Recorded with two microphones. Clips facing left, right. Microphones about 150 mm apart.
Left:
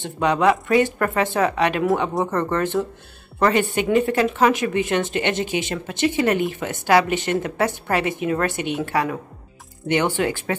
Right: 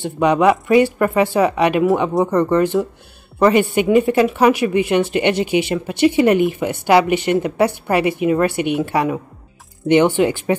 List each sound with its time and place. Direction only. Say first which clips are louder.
0.0 s speech: right 4 dB; 10° right (ahead or behind)